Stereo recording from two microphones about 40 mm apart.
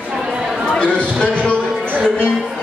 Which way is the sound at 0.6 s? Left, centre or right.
Left.